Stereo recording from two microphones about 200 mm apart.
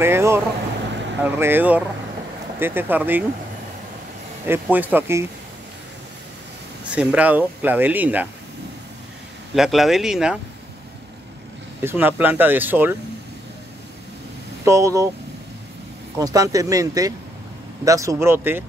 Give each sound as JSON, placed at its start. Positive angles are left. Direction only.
{"t": 0.0, "sound": "speech", "side_deg": -10}
{"t": 4.5, "sound": "speech", "side_deg": -10}
{"t": 6.9, "sound": "speech", "side_deg": -5}
{"t": 9.6, "sound": "speech", "side_deg": 0}
{"t": 11.8, "sound": "speech", "side_deg": -10}
{"t": 14.6, "sound": "speech", "side_deg": -15}
{"t": 16.2, "sound": "speech", "side_deg": -20}